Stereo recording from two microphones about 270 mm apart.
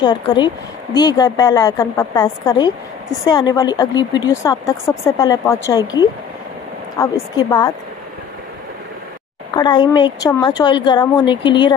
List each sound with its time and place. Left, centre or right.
0.0 s a woman's voice: centre
9.6 s a woman's voice: centre